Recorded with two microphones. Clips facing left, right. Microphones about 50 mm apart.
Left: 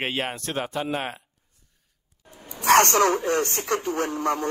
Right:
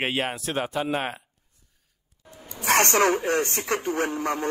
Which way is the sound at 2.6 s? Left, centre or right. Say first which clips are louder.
Left 5 dB; left.